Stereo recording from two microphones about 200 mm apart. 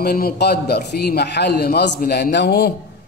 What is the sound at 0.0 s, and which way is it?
A man's voice, 50° left (ahead or behind).